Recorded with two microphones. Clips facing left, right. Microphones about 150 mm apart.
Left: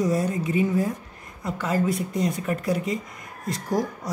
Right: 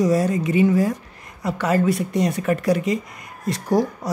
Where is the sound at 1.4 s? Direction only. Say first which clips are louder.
Right 5 dB; 75° right (ahead or behind).